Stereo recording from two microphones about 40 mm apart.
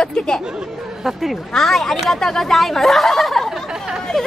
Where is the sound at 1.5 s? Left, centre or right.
Centre.